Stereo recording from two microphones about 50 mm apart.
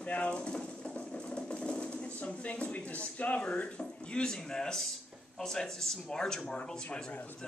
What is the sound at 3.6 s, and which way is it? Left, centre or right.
Speech, left.